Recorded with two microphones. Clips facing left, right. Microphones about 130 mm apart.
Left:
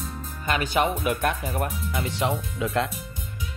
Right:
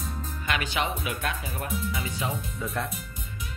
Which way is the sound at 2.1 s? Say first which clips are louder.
Left 5 dB; 75° left (ahead or behind).